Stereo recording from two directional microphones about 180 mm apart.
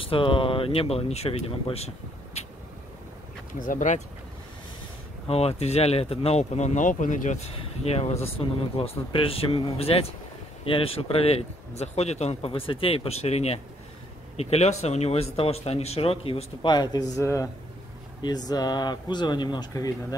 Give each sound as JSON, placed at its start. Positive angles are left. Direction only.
{"t": 0.0, "sound": "speech", "side_deg": 30}
{"t": 3.5, "sound": "speech", "side_deg": 50}
{"t": 5.3, "sound": "speech", "side_deg": 35}